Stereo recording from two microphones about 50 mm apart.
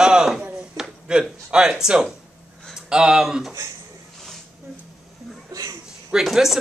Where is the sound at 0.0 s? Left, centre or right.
Centre.